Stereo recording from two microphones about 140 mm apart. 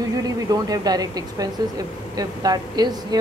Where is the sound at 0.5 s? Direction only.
30° right (ahead or behind).